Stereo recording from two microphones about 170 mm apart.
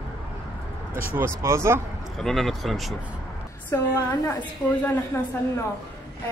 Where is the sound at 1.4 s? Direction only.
15° right (ahead or behind).